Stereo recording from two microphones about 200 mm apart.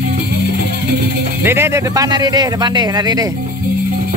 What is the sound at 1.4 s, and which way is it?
A man's voice, 10° right (ahead or behind).